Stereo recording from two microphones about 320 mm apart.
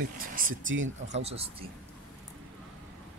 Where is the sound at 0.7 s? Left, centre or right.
Right.